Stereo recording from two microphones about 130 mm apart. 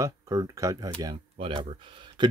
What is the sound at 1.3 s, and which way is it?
Speech, 40° right (ahead or behind).